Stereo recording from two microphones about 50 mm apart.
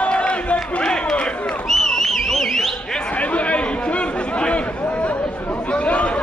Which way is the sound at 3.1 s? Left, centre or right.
Left.